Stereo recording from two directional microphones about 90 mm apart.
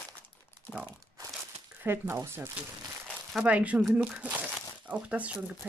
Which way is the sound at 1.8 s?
25° right (ahead or behind).